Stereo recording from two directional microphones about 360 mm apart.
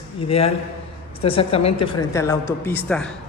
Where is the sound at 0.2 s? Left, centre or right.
Centre.